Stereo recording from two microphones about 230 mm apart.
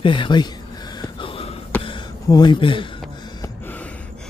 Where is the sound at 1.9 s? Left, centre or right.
Centre.